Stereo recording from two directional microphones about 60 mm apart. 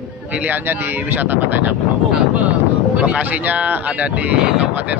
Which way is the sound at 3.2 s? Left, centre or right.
Right.